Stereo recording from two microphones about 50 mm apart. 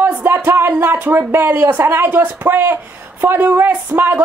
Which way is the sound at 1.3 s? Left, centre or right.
Right.